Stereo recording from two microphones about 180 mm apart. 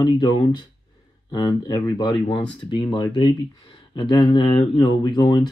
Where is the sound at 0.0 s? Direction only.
25° left (ahead or behind).